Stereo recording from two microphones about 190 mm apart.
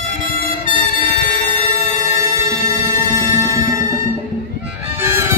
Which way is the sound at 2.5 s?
15° right (ahead or behind).